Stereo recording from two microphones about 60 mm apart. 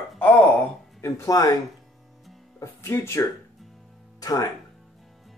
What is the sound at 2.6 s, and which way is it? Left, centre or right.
Speech, left.